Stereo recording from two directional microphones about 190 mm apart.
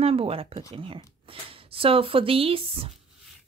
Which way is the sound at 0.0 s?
30° right (ahead or behind).